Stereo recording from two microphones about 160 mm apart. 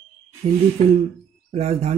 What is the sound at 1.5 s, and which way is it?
Speech, 40° right (ahead or behind).